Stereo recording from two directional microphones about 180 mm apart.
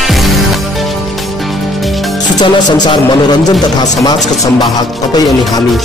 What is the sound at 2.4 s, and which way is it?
Speech, 25° left (ahead or behind).